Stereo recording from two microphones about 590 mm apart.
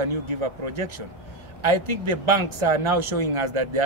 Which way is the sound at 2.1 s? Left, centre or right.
Right.